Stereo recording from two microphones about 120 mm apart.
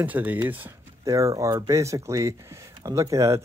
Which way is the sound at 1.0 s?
25° right (ahead or behind).